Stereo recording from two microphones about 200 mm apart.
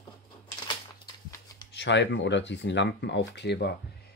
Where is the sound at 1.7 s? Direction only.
60° left (ahead or behind).